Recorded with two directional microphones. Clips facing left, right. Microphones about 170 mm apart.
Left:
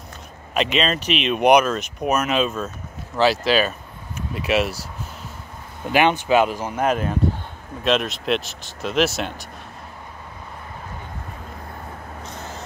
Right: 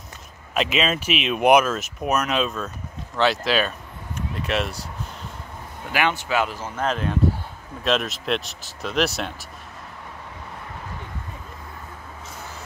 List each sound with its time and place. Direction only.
0.6 s speech: 5° right (ahead or behind)
5.9 s speech: 20° left (ahead or behind); by 9.5 s centre (ahead or behind)